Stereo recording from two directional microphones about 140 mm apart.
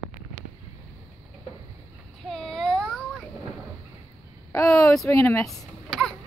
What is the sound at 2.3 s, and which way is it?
Child singing, 5° left (ahead or behind).